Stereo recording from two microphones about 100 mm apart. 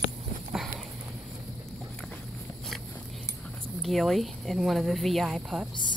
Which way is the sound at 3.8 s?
Centre (ahead or behind).